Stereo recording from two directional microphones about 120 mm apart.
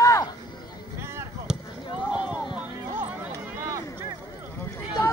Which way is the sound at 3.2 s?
25° right (ahead or behind).